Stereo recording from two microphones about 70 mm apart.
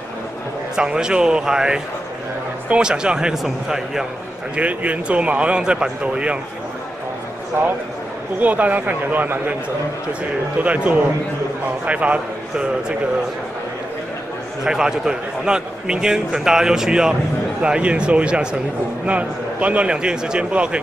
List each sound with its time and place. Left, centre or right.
0.7 s a man's voice: centre
4.6 s a man's voice: centre
8.4 s speech: right
10.6 s speech: right
14.6 s a man's voice: centre